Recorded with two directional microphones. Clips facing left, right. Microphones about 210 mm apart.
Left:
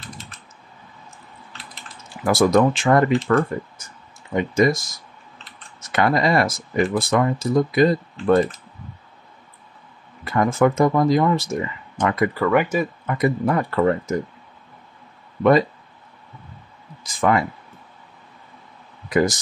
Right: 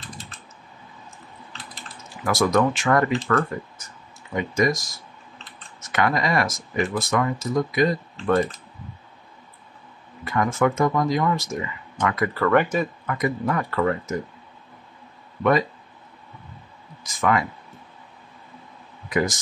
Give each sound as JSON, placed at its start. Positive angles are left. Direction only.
{"t": 2.2, "sound": "speech", "side_deg": 30}
{"t": 10.2, "sound": "speech", "side_deg": 35}
{"t": 12.4, "sound": "speech", "side_deg": 10}
{"t": 13.0, "sound": "speech", "side_deg": 30}
{"t": 17.0, "sound": "speech", "side_deg": 30}
{"t": 19.0, "sound": "speech", "side_deg": 35}